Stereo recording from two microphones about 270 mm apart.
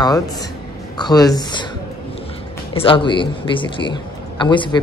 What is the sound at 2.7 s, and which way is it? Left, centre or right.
Speech, centre.